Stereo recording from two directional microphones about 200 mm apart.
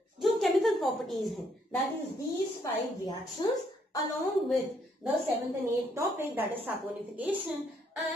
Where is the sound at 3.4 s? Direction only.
20° left (ahead or behind).